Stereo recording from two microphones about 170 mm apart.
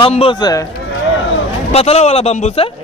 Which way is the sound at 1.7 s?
35° left (ahead or behind).